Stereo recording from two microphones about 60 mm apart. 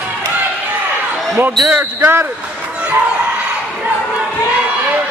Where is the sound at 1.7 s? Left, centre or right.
Right.